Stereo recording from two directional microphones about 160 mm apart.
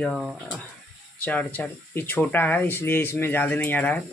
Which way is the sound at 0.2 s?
5° right (ahead or behind).